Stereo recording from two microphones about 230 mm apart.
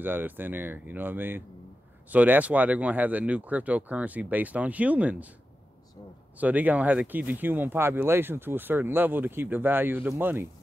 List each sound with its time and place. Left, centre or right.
0.0 s speech: centre
6.3 s speech: centre